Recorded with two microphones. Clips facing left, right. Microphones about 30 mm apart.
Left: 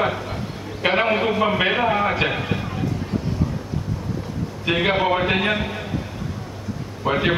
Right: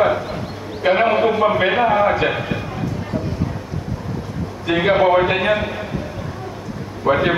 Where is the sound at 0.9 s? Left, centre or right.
Centre.